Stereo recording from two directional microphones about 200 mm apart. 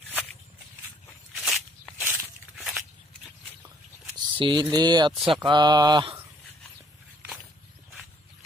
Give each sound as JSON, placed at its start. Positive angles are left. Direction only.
{"t": 1.3, "sound": "walk", "side_deg": 0}
{"t": 2.0, "sound": "a sound", "side_deg": 0}
{"t": 4.4, "sound": "speech", "side_deg": -20}